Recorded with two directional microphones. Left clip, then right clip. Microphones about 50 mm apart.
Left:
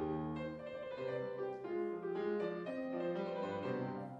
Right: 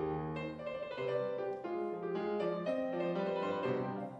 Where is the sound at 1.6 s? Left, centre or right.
Right.